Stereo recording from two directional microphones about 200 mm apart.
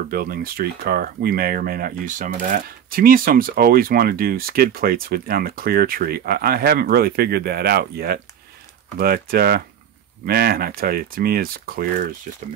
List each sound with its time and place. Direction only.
0.1 s speech: 45° right (ahead or behind)